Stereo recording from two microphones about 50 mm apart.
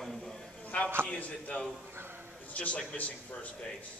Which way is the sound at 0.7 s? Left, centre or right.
Left.